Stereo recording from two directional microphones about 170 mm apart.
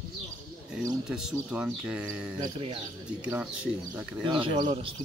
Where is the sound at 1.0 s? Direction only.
5° right (ahead or behind).